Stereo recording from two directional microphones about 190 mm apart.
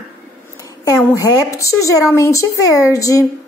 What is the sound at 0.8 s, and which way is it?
A woman's voice, 15° left (ahead or behind).